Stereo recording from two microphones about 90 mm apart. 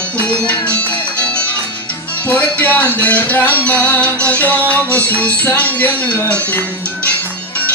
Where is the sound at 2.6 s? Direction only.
15° left (ahead or behind).